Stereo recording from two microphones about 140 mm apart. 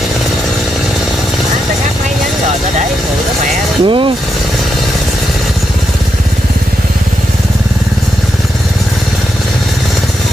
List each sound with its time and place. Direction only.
3.8 s speech: 35° right (ahead or behind)